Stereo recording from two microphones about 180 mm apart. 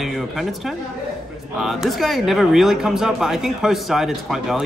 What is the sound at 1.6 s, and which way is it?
Speech, centre (ahead or behind).